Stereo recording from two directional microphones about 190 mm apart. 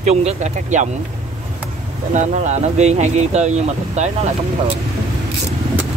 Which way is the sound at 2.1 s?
40° right (ahead or behind).